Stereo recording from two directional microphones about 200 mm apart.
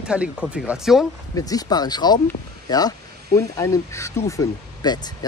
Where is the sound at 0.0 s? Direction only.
5° right (ahead or behind).